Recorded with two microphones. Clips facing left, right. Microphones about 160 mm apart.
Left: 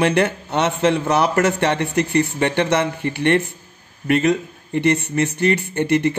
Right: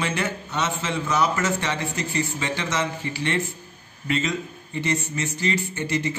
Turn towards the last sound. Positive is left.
turn(degrees=60)  # may be behind; listen again after turning